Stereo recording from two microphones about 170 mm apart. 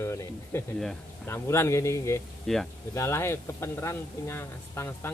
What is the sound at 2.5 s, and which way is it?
Speech, 5° left (ahead or behind).